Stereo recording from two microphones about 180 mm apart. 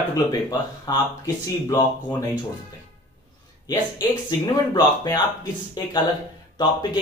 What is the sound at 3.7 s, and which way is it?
Speech, 25° left (ahead or behind).